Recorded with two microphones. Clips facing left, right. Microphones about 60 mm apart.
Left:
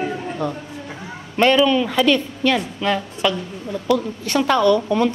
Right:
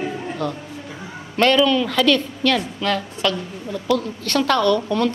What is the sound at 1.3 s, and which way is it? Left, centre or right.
A woman's voice, centre.